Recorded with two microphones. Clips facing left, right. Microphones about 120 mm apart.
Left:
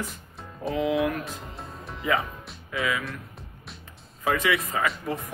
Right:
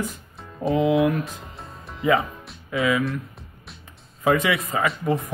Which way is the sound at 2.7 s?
20° right (ahead or behind).